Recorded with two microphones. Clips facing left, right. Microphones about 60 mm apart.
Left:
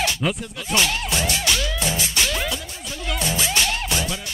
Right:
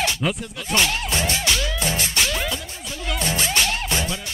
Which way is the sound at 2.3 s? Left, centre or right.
Centre.